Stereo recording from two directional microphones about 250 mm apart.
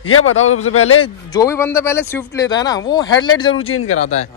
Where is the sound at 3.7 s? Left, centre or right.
Left.